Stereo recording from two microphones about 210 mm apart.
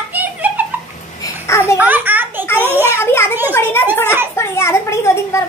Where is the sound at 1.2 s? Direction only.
15° left (ahead or behind).